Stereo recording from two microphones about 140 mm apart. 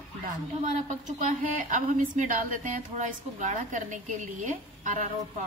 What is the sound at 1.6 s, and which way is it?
A woman's voice, 65° right (ahead or behind).